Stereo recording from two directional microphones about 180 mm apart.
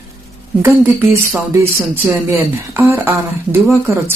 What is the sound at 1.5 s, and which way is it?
Speech, 15° right (ahead or behind).